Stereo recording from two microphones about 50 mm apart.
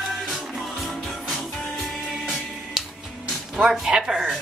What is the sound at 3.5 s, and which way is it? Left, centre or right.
Speech, centre.